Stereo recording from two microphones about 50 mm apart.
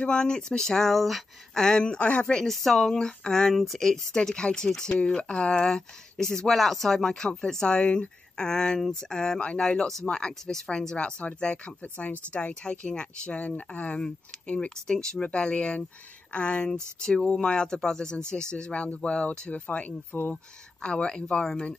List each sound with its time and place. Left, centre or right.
0.0 s speech: centre
2.4 s speech: centre; by 16.6 s left
17.0 s speech: centre
20.1 s speech: left
20.8 s speech: centre